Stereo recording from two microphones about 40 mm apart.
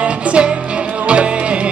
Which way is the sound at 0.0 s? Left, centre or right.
Right.